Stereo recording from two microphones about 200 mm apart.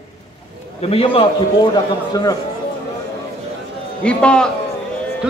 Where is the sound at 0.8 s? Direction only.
30° left (ahead or behind).